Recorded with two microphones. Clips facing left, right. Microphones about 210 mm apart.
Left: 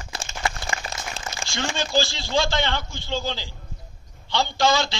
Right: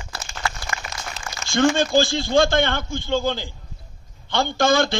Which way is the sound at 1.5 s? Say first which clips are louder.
Right 8 dB; 50° right (ahead or behind).